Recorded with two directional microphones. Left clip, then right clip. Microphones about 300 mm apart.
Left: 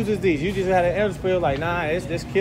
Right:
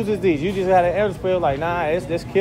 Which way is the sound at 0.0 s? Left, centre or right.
Centre.